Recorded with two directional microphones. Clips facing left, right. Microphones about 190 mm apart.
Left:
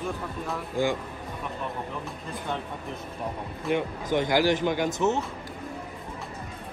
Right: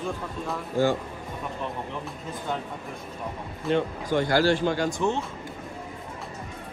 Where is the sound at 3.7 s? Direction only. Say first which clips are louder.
Right 2 dB; 15° left (ahead or behind).